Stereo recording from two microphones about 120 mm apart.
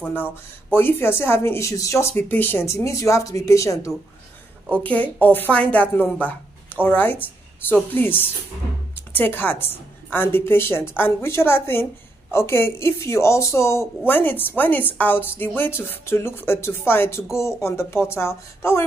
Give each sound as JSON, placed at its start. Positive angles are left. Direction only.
{"t": 0.0, "sound": "a woman's voice", "side_deg": 15}
{"t": 4.8, "sound": "a woman's voice", "side_deg": 15}